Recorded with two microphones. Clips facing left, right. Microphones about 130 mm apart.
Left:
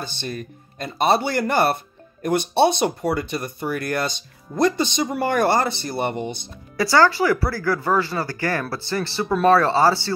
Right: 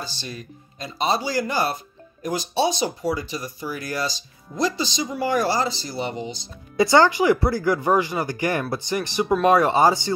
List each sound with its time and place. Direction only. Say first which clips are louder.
0.0 s speech: left 4 dB; 55° left (ahead or behind)
6.8 s speech: right 1 dB; 20° right (ahead or behind)